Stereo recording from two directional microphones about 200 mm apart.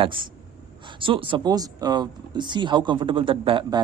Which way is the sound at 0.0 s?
25° right (ahead or behind).